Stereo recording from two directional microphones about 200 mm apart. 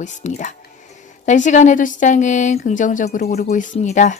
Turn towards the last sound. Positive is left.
turn(degrees=35)  # may be behind; listen again after turning